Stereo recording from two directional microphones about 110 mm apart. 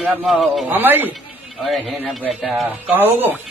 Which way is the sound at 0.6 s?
15° right (ahead or behind).